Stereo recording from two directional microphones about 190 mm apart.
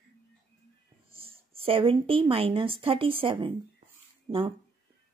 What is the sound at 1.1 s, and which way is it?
Speech, 30° right (ahead or behind).